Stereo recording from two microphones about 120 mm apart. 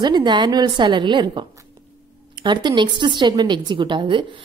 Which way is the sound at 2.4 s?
40° right (ahead or behind).